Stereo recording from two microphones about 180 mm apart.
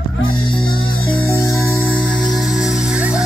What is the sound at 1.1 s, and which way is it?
Music, 10° left (ahead or behind).